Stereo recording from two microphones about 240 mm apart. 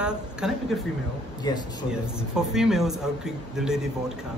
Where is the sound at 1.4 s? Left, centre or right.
Centre.